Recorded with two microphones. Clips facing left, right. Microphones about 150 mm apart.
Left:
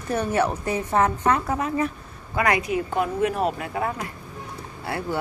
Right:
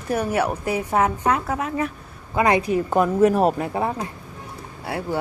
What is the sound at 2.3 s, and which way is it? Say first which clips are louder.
Speech: right 4 dB; 25° right (ahead or behind).